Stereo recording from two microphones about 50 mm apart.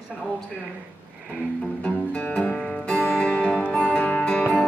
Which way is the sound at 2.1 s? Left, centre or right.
Left.